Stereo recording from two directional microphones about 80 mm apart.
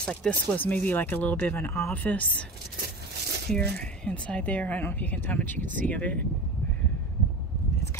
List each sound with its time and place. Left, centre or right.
0.0 s speech: centre; by 2.0 s left
2.0 s a woman's voice: centre
3.4 s speech: centre